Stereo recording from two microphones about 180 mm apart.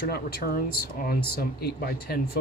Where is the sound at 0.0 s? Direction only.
60° left (ahead or behind).